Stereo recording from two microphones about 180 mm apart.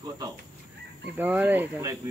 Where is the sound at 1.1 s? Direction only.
10° right (ahead or behind).